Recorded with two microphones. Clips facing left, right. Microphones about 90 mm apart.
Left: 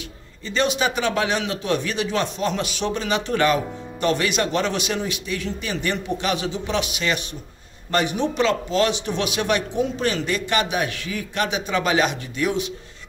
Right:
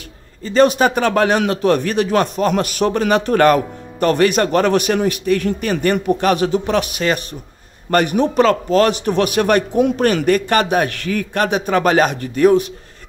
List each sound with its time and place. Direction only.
0.5 s speech: 45° right (ahead or behind)